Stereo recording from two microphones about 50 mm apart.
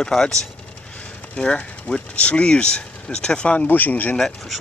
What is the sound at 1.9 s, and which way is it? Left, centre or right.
Speech, left.